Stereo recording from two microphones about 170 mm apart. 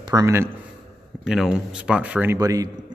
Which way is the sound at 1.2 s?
5° right (ahead or behind).